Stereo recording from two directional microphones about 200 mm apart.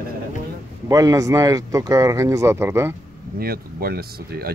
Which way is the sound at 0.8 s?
15° right (ahead or behind).